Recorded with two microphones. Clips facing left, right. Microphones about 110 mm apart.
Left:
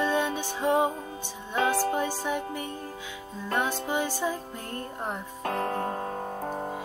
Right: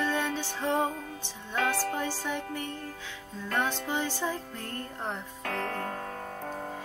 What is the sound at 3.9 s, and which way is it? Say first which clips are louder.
Music: left 3 dB; 15° left (ahead or behind).